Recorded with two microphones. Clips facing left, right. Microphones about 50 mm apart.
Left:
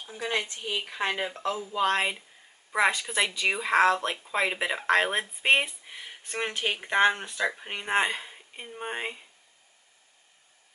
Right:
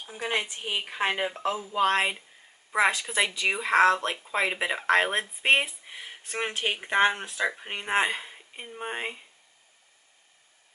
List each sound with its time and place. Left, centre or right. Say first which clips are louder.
0.1 s speech: right 1 dB; centre